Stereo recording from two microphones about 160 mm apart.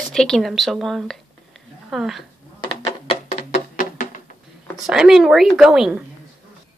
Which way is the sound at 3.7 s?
55° left (ahead or behind).